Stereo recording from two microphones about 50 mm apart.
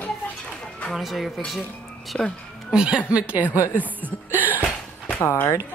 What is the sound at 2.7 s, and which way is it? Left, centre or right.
Speech, centre.